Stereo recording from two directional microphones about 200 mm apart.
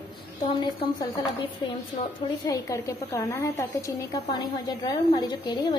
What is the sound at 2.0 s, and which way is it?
Speech, 35° left (ahead or behind).